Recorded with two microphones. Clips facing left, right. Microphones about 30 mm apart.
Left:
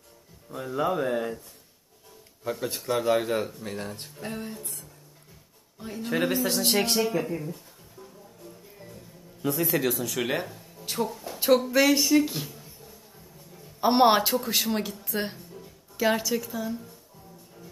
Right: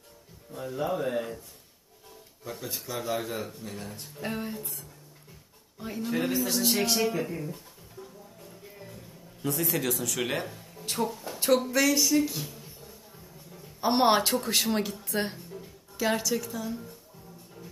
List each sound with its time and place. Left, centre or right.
1.0 s speech: centre
3.0 s speech: left
4.2 s speech: centre
5.8 s a sound: centre
6.0 s speech: left
6.6 s speech: left
7.0 s speech: centre
9.4 s speech: centre
10.5 s music: centre
11.3 s a sound: centre
11.7 s speech: left
13.7 s a woman's voice: centre
16.0 s speech: centre